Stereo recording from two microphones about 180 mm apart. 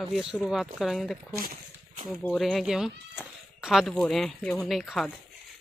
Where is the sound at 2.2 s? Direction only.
Centre (ahead or behind).